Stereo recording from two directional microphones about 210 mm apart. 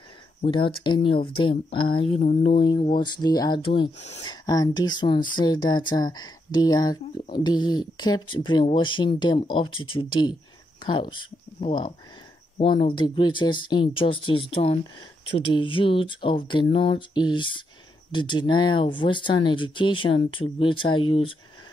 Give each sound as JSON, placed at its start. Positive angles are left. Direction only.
{"t": 0.4, "sound": "speech", "side_deg": 25}